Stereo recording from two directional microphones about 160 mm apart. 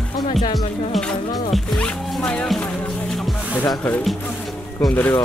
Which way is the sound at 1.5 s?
5° left (ahead or behind).